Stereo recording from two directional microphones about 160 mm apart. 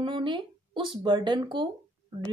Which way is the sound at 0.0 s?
30° right (ahead or behind).